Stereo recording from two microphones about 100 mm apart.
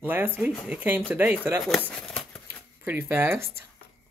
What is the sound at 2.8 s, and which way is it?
Speech, 20° right (ahead or behind).